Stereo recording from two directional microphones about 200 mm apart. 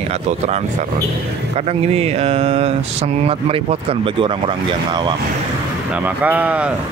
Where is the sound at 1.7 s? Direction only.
30° right (ahead or behind).